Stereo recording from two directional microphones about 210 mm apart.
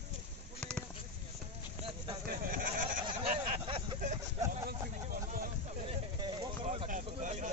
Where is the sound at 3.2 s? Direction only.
25° right (ahead or behind).